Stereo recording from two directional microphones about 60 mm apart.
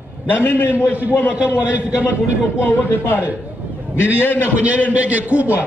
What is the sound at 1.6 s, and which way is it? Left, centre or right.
Speech, centre.